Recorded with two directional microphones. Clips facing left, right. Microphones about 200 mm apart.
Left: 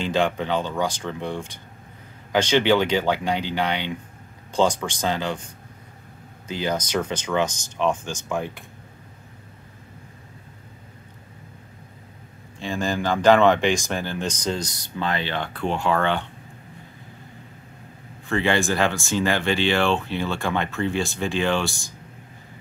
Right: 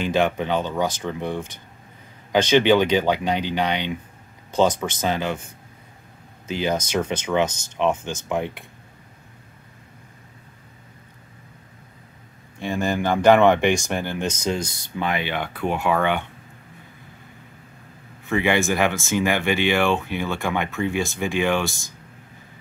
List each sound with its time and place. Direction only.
0.0 s speech: 15° right (ahead or behind)
4.5 s speech: 10° left (ahead or behind)
5.0 s speech: 15° right (ahead or behind)
6.5 s speech: 15° right (ahead or behind)
12.5 s speech: 15° right (ahead or behind)
18.2 s speech: 15° right (ahead or behind)